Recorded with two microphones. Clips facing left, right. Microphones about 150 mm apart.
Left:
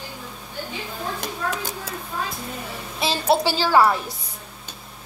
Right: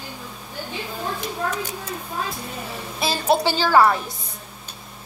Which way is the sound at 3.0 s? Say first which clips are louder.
Even; 15° right (ahead or behind).